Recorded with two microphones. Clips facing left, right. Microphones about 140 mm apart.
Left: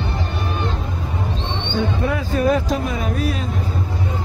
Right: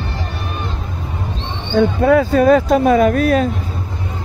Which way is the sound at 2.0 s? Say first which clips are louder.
Right 10 dB; 90° right.